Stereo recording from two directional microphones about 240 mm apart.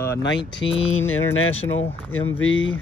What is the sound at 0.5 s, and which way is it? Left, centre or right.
Mantra, left.